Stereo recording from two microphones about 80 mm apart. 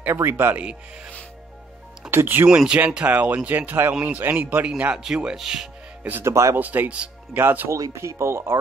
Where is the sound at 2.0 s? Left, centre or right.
Right.